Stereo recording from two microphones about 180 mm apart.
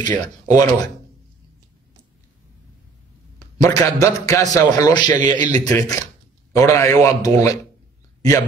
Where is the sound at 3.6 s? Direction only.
20° left (ahead or behind).